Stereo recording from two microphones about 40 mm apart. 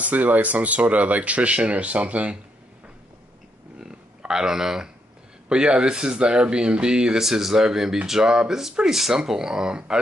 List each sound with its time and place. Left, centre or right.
0.0 s speech: right
3.8 s a sound: centre
5.5 s speech: right